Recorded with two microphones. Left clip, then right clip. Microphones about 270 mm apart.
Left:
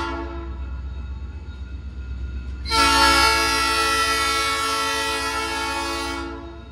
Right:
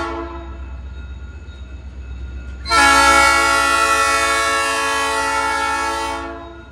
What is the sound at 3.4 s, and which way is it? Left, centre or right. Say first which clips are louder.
Music: right 5 dB; centre.